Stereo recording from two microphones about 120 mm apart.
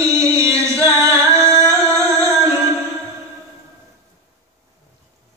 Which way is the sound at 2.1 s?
20° right (ahead or behind).